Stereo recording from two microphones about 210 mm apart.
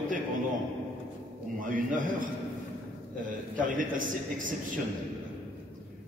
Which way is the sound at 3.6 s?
40° right (ahead or behind).